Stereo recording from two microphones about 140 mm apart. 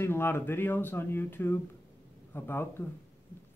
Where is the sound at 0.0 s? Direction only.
15° left (ahead or behind).